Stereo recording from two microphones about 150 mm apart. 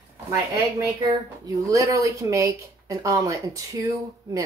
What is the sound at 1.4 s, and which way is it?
A woman's voice, 20° right (ahead or behind).